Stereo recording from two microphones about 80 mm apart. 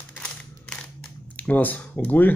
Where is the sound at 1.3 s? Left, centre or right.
Left.